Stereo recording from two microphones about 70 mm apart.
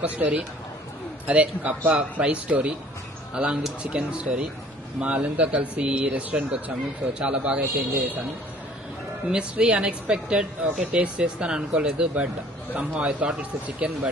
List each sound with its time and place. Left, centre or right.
0.0 s a man's voice: right
3.3 s a man's voice: centre
9.3 s a man's voice: centre